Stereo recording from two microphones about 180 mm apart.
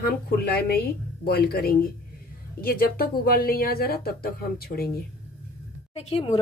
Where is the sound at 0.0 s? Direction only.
60° left (ahead or behind).